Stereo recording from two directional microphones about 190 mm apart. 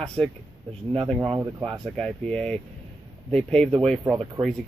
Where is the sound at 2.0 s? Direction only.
5° left (ahead or behind).